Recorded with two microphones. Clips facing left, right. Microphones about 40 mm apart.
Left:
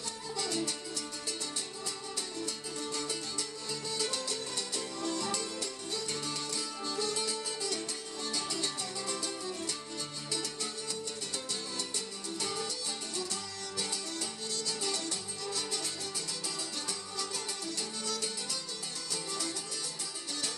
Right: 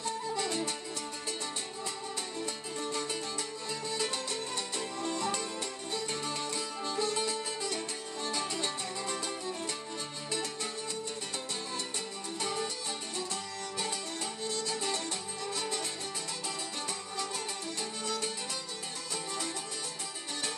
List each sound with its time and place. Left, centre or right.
0.0 s music: right
2.8 s music: right
12.4 s music: right
18.0 s music: right